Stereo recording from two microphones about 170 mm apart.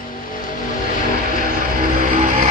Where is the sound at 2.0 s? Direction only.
50° right (ahead or behind).